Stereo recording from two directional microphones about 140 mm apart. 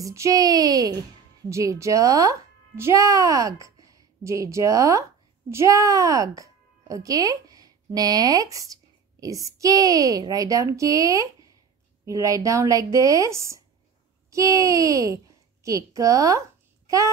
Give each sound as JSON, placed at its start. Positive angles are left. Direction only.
{"t": 0.0, "sound": "a woman's voice", "side_deg": -20}